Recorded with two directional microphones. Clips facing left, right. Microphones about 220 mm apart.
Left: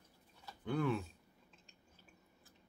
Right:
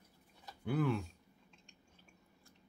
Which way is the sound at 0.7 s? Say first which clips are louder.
Right 1 dB; centre (ahead or behind).